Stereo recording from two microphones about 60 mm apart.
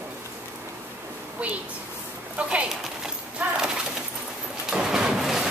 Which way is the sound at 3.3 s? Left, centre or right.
Centre.